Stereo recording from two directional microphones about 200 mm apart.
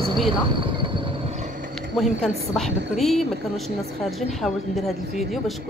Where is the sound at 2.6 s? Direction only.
Centre (ahead or behind).